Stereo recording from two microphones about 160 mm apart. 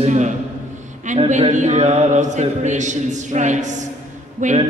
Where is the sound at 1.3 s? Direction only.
50° right (ahead or behind).